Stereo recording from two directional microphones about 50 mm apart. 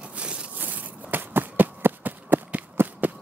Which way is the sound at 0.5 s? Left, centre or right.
Right.